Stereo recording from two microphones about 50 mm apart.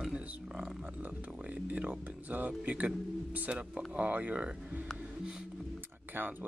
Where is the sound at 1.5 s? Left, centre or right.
Right.